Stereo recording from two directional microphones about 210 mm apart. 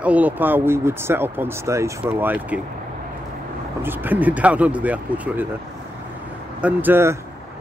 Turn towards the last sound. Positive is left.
turn(degrees=-10)  # may be behind; listen again after turning